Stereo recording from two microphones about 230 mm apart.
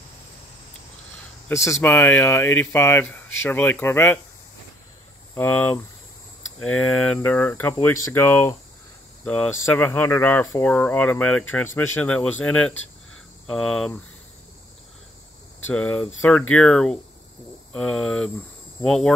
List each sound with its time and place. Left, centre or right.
1.5 s speech: centre
5.3 s speech: centre
15.6 s speech: centre